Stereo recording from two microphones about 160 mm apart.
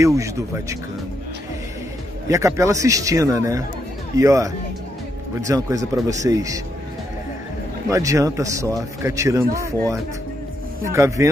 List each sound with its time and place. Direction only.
0.0 s a man's voice: 20° right (ahead or behind)
2.2 s a man's voice: 20° right (ahead or behind)
5.5 s a man's voice: 20° right (ahead or behind)
7.9 s a man's voice: 20° right (ahead or behind)
10.8 s speech: 20° right (ahead or behind)